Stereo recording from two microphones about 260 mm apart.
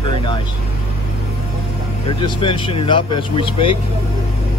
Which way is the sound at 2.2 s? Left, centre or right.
Centre.